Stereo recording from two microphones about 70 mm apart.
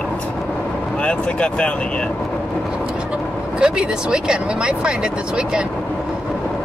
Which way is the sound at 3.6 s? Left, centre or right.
Centre.